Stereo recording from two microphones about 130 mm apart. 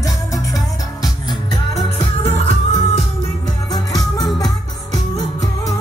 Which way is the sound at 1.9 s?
65° right (ahead or behind).